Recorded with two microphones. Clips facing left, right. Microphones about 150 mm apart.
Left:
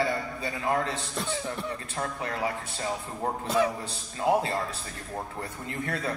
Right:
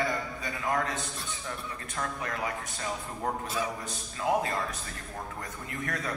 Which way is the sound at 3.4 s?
65° left (ahead or behind).